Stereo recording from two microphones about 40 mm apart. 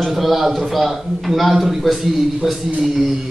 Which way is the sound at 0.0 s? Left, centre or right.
Centre.